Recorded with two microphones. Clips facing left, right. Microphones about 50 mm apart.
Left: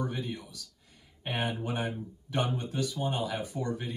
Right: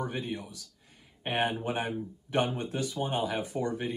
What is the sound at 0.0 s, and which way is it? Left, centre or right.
Speech, right.